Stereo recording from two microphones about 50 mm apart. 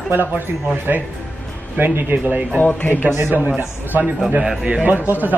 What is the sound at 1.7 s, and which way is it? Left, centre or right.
Speech, right.